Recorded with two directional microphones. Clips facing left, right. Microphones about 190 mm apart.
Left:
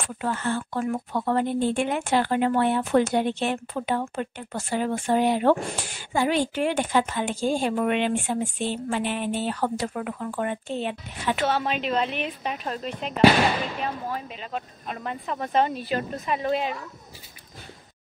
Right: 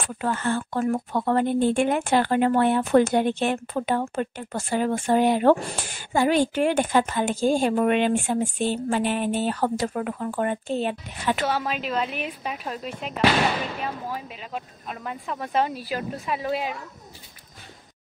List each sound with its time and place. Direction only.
0.2 s speech: 55° right (ahead or behind)
11.4 s speech: 5° right (ahead or behind)